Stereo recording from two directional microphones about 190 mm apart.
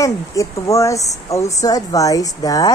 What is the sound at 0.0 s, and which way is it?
Speech, 15° left (ahead or behind).